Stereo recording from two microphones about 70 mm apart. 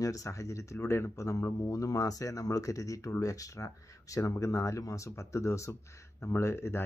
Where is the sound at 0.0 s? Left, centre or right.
Left.